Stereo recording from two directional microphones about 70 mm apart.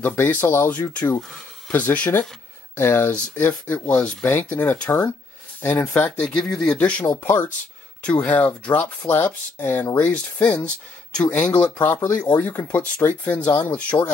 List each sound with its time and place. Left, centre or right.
0.0 s speech: left
0.7 s speech: left
6.2 s speech: centre
7.2 s speech: left
8.0 s speech: centre